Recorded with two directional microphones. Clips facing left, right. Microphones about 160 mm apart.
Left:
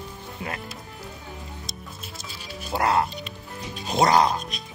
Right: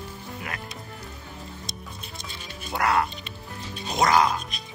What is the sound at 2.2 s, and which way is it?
Music, 5° left (ahead or behind).